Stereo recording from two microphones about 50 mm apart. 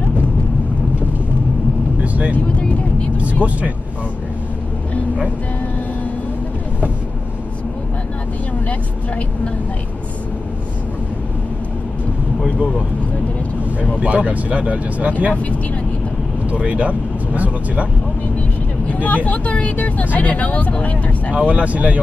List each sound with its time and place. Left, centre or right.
3.4 s speech: right
8.6 s speech: left
13.7 s speech: right
16.4 s speech: right
18.9 s speech: left
21.3 s speech: right